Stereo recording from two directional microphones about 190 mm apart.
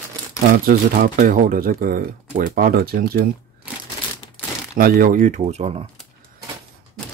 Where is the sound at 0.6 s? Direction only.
50° right (ahead or behind).